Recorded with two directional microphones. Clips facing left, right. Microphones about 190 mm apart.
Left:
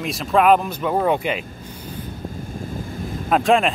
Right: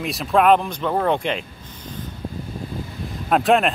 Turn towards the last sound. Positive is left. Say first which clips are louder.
# even
turn(degrees=0)  # may be behind; listen again after turning